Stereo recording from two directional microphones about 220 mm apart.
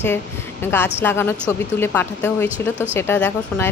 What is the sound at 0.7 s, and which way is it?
A woman's voice, 10° left (ahead or behind).